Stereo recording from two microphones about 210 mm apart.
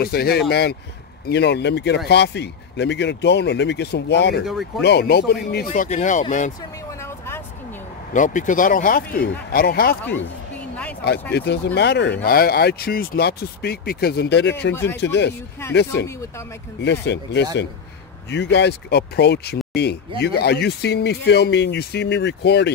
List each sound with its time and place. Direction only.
0.0 s speech: 50° left (ahead or behind)
4.5 s speech: centre (ahead or behind)
4.8 s speech: 50° left (ahead or behind)
5.7 s speech: 35° left (ahead or behind)
6.9 s vehicle: 10° left (ahead or behind)
8.1 s speech: 35° left (ahead or behind)
11.3 s speech: 50° left (ahead or behind)
14.7 s speech: 10° left (ahead or behind)
15.0 s speech: 55° left (ahead or behind)
16.8 s speech: 55° left (ahead or behind)